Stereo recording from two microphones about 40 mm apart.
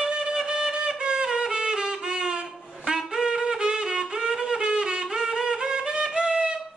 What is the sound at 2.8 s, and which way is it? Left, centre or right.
Wind instrument, centre.